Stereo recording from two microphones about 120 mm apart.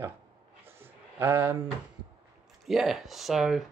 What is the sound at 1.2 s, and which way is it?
Speech, 15° right (ahead or behind).